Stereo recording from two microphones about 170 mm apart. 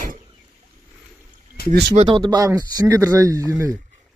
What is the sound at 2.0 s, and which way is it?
Speech, 25° right (ahead or behind).